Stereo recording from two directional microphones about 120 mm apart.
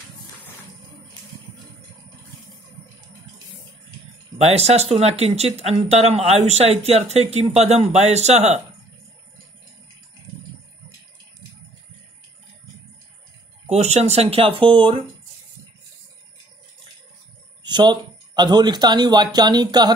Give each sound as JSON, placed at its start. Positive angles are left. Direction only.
{"t": 4.4, "sound": "speech", "side_deg": -60}
{"t": 13.7, "sound": "speech", "side_deg": -65}
{"t": 17.6, "sound": "speech", "side_deg": -35}